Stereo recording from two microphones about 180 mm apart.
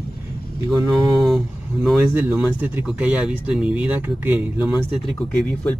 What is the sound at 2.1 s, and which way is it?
Speech, 10° right (ahead or behind).